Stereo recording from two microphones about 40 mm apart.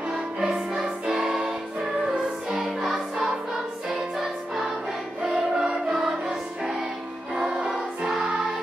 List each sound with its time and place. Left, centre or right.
0.5 s music: centre
2.5 s music: centre